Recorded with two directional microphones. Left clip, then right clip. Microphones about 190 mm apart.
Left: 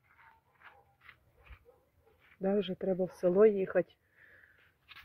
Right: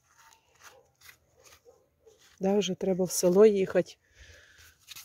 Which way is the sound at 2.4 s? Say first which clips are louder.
Right 5 dB; 35° right (ahead or behind).